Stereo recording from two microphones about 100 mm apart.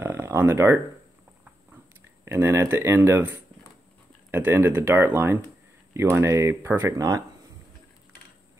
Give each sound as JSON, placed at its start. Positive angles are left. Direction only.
{"t": 0.0, "sound": "a sound", "side_deg": -25}
{"t": 2.0, "sound": "speech", "side_deg": -25}
{"t": 7.0, "sound": "speech", "side_deg": -35}